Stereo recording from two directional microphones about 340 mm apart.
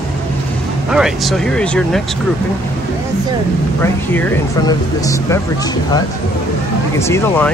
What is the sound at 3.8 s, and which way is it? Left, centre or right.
Speech, centre.